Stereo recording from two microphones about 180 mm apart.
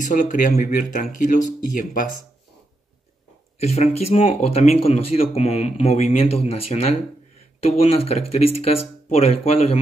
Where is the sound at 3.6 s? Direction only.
35° left (ahead or behind).